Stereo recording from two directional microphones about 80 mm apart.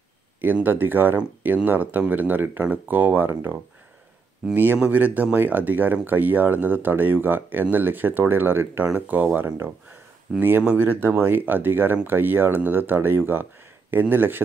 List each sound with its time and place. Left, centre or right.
0.4 s speech: right
4.7 s speech: centre